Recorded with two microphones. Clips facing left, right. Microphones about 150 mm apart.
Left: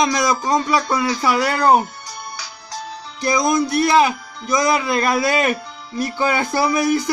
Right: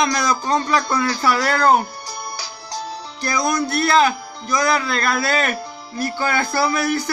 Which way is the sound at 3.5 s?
15° left (ahead or behind).